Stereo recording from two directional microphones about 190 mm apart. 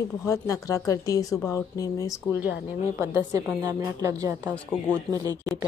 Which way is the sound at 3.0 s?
15° right (ahead or behind).